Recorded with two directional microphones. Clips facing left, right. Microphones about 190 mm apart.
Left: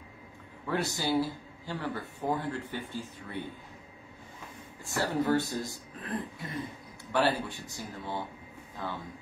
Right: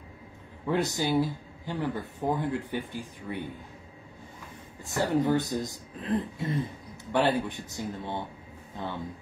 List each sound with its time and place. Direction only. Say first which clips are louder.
0.7 s speech: right 3 dB; 20° right (ahead or behind)
4.8 s speech: right 3 dB; 15° right (ahead or behind)